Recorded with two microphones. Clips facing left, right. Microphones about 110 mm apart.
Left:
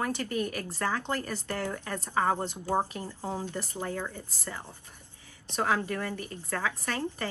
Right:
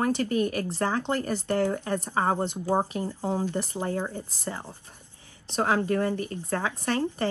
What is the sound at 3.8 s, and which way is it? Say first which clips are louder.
Speech: right 3 dB; 35° right (ahead or behind).